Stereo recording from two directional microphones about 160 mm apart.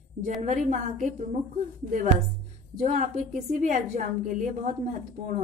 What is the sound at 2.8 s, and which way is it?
A woman's voice, 55° right (ahead or behind).